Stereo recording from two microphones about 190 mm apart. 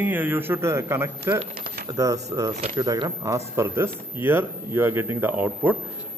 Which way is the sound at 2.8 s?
20° right (ahead or behind).